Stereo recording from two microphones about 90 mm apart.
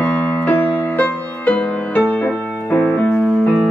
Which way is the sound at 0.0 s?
20° left (ahead or behind).